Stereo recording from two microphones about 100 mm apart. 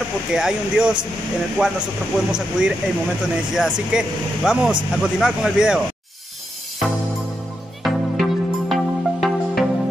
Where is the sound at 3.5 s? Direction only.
5° right (ahead or behind).